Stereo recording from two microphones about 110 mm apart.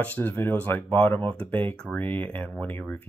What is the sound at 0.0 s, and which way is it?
Speech, 15° left (ahead or behind).